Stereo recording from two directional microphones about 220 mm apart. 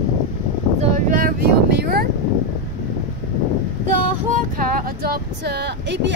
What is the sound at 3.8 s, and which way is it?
Female singing, 35° right (ahead or behind).